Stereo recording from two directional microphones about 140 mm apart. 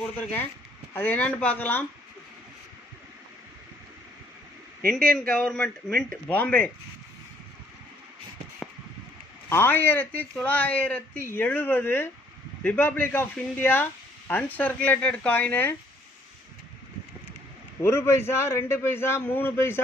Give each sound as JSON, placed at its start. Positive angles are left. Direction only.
{"t": 0.0, "sound": "speech", "side_deg": 10}
{"t": 5.2, "sound": "speech", "side_deg": 10}
{"t": 9.5, "sound": "speech", "side_deg": 15}
{"t": 17.8, "sound": "speech", "side_deg": 20}